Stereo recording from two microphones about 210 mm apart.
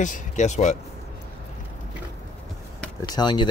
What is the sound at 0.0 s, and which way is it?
Speech, 35° left (ahead or behind).